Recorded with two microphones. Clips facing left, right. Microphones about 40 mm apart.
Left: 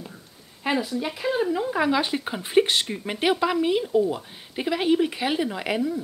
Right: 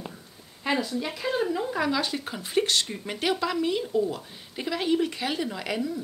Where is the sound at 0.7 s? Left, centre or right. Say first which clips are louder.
Left 2 dB; centre.